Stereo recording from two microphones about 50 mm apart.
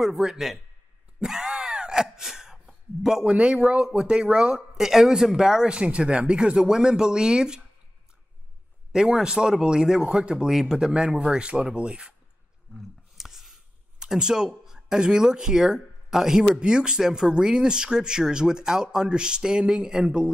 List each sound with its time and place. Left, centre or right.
0.0 s speech: centre
1.2 s wail: centre
3.3 s speech: right
8.9 s speech: centre
13.2 s a sound: centre
16.5 s speech: centre